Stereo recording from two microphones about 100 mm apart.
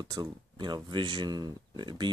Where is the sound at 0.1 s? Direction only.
45° right (ahead or behind).